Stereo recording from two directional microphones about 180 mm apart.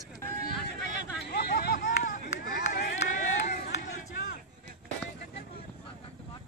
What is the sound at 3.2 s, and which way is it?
Run, 55° left (ahead or behind).